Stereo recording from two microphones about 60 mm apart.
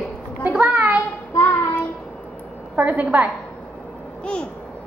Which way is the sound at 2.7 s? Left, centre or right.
Right.